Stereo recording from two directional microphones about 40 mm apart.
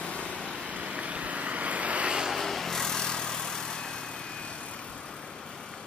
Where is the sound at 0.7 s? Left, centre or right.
Right.